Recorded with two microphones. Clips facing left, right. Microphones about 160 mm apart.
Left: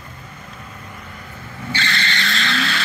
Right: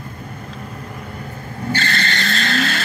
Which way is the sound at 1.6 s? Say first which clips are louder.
Right 3 dB; 45° right (ahead or behind).